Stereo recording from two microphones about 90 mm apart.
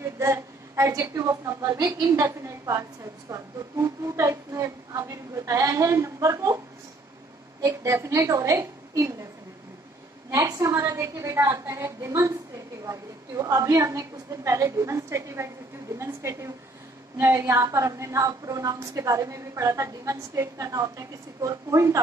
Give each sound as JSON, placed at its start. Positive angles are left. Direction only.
{"t": 0.2, "sound": "a woman's voice", "side_deg": -35}
{"t": 7.6, "sound": "a woman's voice", "side_deg": -35}
{"t": 10.3, "sound": "a woman's voice", "side_deg": -40}